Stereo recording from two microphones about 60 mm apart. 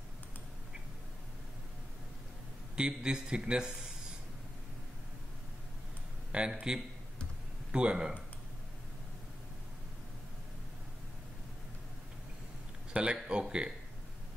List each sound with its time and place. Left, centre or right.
2.7 s a man's voice: centre
6.3 s a man's voice: centre
12.9 s a man's voice: centre